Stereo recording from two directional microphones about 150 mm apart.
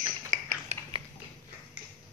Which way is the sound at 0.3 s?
55° right (ahead or behind).